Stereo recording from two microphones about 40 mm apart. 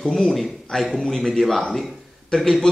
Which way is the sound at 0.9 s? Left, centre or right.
Centre.